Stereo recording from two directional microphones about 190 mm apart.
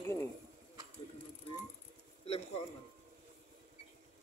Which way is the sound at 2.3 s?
30° left (ahead or behind).